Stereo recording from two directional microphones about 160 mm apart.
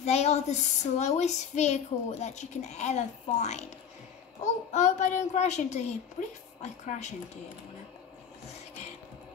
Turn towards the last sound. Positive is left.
turn(degrees=45)  # may be behind; listen again after turning